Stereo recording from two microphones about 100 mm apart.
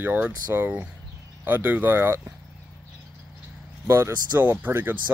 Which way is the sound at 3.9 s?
20° right (ahead or behind).